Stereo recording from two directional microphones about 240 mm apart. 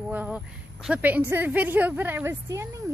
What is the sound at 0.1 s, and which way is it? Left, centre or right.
A woman's voice, centre.